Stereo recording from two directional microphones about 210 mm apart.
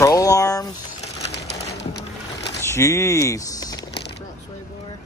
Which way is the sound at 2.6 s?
10° left (ahead or behind).